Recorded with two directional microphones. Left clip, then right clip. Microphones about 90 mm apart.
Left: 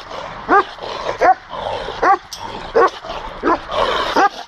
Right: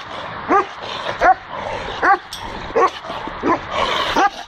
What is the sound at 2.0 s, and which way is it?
Dog, 30° left (ahead or behind).